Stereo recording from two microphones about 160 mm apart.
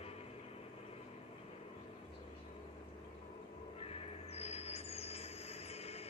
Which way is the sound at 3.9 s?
40° left (ahead or behind).